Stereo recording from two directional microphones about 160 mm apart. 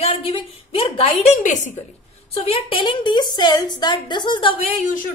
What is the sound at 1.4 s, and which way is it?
Speech, 50° left (ahead or behind).